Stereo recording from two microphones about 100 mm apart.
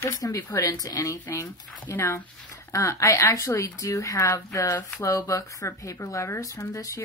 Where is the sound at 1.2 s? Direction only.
20° left (ahead or behind).